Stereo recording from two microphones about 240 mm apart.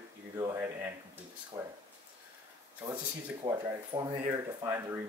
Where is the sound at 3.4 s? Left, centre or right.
Centre.